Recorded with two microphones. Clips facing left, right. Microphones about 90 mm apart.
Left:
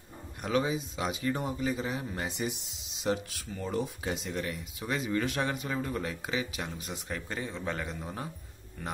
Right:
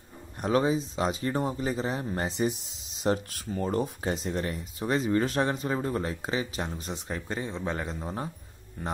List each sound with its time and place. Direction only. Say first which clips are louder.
0.4 s speech: right 4 dB; 35° right (ahead or behind)